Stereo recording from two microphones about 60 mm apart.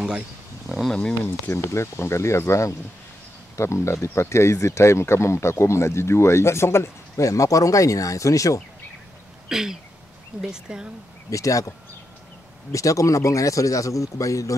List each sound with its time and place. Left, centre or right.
0.8 s speech: centre
1.5 s speech: left
9.5 s speech: centre
11.2 s speech: left
12.7 s speech: left